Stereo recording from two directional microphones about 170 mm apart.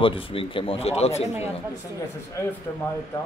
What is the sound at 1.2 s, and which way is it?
Speech, 15° right (ahead or behind).